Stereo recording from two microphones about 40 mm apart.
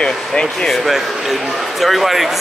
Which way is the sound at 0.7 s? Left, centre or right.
Centre.